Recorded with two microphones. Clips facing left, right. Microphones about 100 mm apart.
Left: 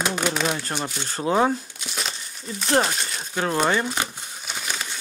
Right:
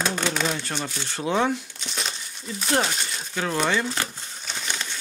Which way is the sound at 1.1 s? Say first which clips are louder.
Left 3 dB; 35° left (ahead or behind).